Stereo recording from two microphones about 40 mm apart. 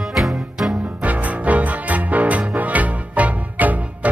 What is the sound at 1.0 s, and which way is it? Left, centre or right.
Music, right.